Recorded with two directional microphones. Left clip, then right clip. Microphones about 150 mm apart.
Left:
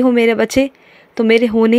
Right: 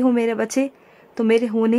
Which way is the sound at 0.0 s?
20° left (ahead or behind).